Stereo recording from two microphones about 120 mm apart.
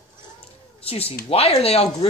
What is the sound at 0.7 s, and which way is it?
Speech, 55° left (ahead or behind).